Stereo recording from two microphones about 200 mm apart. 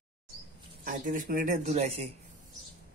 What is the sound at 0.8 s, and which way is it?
Speech, 40° right (ahead or behind).